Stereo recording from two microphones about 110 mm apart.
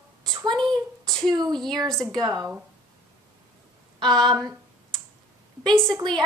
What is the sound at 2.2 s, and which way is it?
Speech, 35° right (ahead or behind).